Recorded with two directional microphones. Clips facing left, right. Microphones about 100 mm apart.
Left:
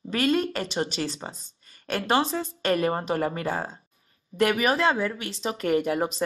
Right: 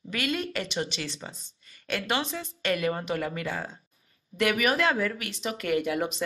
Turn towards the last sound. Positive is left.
turn(degrees=35)  # may be behind; listen again after turning